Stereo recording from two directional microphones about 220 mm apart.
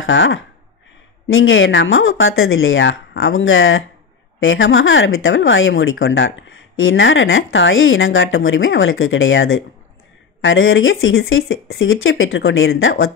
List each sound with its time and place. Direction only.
0.0 s speech: 60° left (ahead or behind)